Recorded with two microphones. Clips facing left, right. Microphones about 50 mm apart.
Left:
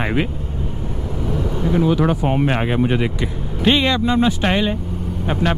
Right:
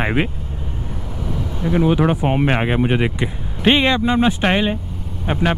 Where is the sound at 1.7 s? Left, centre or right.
Centre.